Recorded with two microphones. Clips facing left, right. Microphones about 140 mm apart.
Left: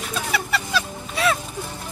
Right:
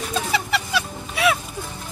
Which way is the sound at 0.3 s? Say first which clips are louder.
Left 1 dB; 10° right (ahead or behind).